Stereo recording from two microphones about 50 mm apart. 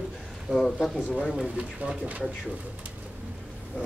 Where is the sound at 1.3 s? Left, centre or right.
Right.